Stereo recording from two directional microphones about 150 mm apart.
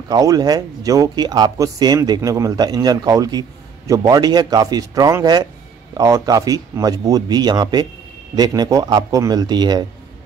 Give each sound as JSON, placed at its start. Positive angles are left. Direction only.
{"t": 0.1, "sound": "speech", "side_deg": -25}